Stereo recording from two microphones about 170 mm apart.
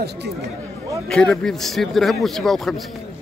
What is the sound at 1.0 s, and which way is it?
A man's voice, 5° left (ahead or behind).